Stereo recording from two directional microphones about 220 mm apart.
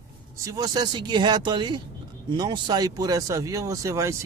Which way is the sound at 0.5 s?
20° right (ahead or behind).